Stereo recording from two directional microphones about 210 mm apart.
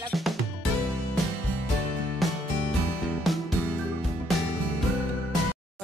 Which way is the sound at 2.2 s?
Centre (ahead or behind).